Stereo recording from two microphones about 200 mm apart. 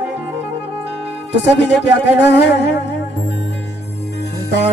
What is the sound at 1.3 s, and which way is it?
Music, 60° left (ahead or behind).